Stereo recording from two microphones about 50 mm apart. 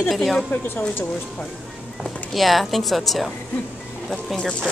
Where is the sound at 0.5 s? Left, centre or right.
Left.